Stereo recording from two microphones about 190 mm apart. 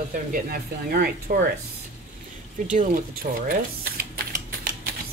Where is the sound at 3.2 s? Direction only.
45° right (ahead or behind).